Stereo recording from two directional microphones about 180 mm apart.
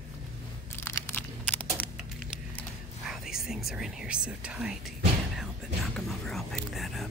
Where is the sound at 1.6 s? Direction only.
5° left (ahead or behind).